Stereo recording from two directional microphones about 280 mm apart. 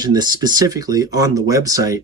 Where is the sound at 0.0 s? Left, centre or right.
Centre.